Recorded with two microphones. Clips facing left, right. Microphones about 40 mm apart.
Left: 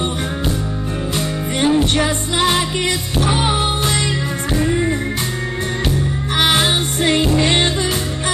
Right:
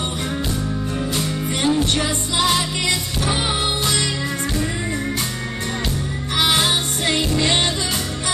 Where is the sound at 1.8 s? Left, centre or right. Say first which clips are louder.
Left 4 dB; left.